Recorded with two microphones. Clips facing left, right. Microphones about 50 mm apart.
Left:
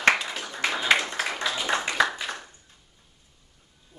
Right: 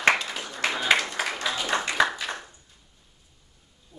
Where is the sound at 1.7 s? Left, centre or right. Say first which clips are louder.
Even; left.